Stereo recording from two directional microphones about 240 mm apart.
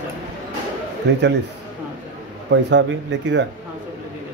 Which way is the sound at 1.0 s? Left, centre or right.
Right.